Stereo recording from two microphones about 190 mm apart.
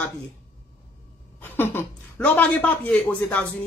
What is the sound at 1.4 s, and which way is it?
A woman's voice, 10° left (ahead or behind).